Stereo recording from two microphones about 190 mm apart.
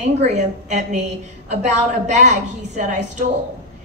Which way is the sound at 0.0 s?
35° right (ahead or behind).